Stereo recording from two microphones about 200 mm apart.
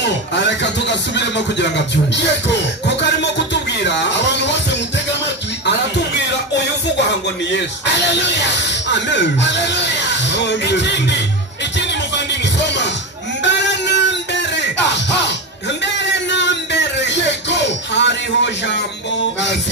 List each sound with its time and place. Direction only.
0.4 s speech: 60° left (ahead or behind)
2.4 s music: 60° left (ahead or behind)
3.8 s speech: 60° left (ahead or behind)
7.1 s speech: 60° left (ahead or behind)
12.5 s music: 60° left (ahead or behind)